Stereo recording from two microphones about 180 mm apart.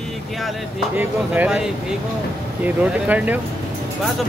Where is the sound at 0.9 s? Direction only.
10° right (ahead or behind).